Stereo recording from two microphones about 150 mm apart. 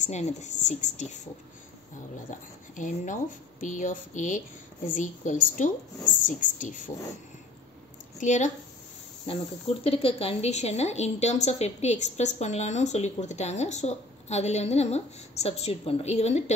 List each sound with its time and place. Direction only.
0.0 s a woman's voice: 50° left (ahead or behind)
2.7 s a woman's voice: 60° left (ahead or behind)
8.2 s a woman's voice: 55° left (ahead or behind)
9.8 s a woman's voice: 40° left (ahead or behind)